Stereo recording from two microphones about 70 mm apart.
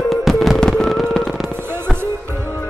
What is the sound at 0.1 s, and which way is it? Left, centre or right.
Music, centre.